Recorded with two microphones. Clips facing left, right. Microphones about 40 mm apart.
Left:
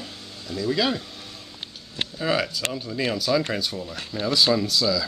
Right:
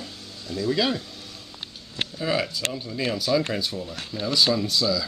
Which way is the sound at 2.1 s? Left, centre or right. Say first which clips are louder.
Left 2 dB; centre.